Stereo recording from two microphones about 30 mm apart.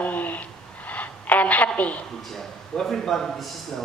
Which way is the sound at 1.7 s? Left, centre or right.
Left.